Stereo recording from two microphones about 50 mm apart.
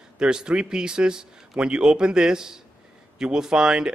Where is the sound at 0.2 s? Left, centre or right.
Centre.